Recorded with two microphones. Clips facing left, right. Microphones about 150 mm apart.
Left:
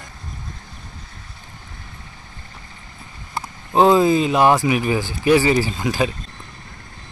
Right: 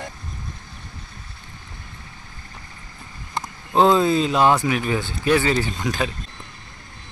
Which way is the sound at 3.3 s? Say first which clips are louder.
Left 2 dB; 10° left (ahead or behind).